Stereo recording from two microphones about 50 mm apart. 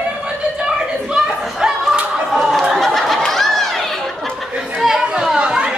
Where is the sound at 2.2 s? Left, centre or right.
Centre.